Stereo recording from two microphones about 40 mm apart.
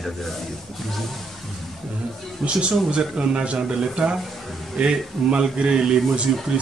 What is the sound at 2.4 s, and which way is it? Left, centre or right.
Speech, right.